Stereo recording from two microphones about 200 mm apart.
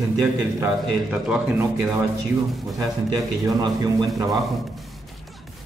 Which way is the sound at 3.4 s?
20° right (ahead or behind).